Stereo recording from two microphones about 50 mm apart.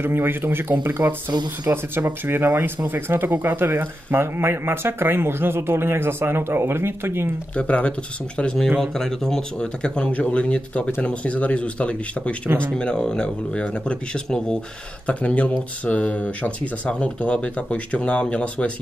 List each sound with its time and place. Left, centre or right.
0.0 s speech: right
7.5 s speech: left
8.6 s speech: centre
8.9 s speech: centre
15.0 s speech: left